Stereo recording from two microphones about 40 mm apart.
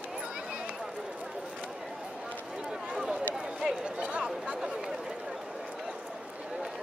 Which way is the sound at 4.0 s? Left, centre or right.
Right.